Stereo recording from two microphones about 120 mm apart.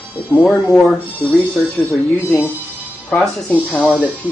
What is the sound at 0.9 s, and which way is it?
Speech, 15° left (ahead or behind).